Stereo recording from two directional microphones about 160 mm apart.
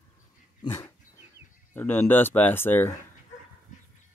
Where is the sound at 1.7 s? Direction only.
10° left (ahead or behind).